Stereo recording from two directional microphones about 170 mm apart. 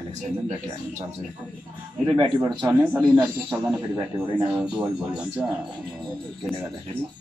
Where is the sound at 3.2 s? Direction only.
5° right (ahead or behind).